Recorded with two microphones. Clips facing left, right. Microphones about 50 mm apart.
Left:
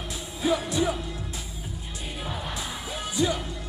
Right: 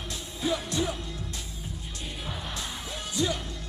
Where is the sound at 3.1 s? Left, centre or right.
Centre.